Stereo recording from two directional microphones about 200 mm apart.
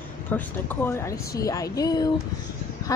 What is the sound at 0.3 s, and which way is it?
A woman's voice, 10° left (ahead or behind).